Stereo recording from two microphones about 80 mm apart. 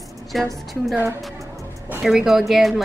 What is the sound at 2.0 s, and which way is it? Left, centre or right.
Speech, centre.